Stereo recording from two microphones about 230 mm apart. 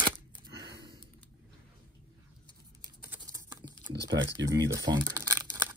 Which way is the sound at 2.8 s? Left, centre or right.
Centre.